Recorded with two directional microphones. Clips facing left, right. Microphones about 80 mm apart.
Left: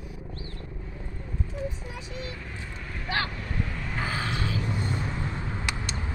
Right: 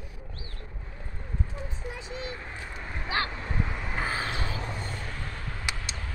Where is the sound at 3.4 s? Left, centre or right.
Right.